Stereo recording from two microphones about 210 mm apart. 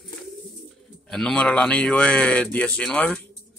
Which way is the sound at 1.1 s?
5° left (ahead or behind).